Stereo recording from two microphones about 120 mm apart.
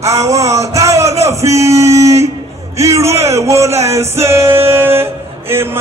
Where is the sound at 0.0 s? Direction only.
25° right (ahead or behind).